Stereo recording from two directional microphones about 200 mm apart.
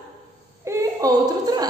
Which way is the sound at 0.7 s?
15° right (ahead or behind).